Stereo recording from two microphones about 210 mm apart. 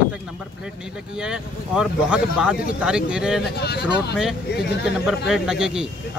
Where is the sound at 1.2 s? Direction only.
5° right (ahead or behind).